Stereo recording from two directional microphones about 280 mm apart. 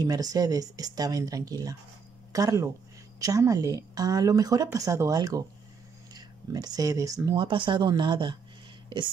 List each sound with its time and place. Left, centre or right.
0.0 s a woman's voice: centre